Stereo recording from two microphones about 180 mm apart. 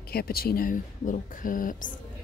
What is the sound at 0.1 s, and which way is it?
A woman's voice, 55° left (ahead or behind).